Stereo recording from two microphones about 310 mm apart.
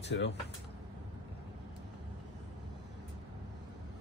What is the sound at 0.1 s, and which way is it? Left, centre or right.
Speech, left.